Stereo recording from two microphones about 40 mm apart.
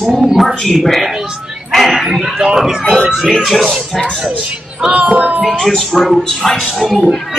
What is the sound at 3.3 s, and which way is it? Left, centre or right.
Speech, centre.